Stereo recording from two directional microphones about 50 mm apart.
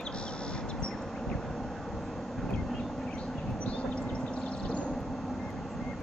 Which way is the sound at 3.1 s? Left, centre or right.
Left.